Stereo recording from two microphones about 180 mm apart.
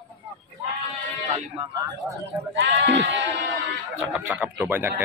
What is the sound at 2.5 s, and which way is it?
Speech, 80° right.